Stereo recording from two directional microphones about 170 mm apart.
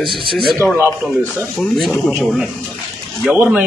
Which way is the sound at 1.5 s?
Centre (ahead or behind).